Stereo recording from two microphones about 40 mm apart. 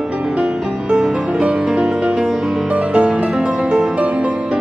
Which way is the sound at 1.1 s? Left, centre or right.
Right.